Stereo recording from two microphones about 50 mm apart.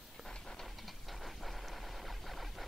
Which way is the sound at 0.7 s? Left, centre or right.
Centre.